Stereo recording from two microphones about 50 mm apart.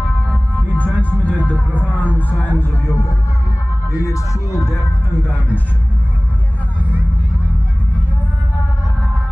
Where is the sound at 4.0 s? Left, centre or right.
Left.